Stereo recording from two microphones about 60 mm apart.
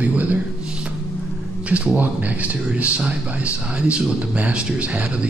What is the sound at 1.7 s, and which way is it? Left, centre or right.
Speech, right.